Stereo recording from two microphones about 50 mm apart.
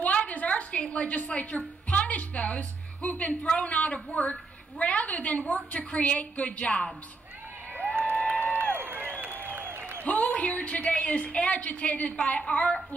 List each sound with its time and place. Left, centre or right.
0.0 s a sound: left
1.9 s a woman's voice: left
8.2 s a sound: left
8.7 s crowd: right
9.6 s applause: right
10.0 s a woman's voice: left